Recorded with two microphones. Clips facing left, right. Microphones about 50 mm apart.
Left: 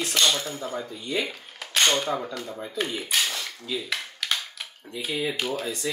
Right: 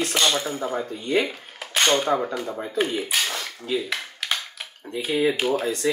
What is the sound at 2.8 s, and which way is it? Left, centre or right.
Speech, centre.